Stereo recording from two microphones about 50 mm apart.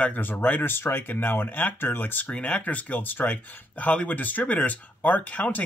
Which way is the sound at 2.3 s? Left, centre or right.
Left.